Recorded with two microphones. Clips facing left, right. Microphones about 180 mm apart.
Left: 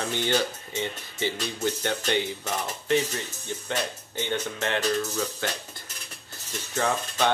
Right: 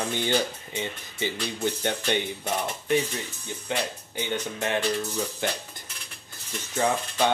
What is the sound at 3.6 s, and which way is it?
Speech, 15° right (ahead or behind).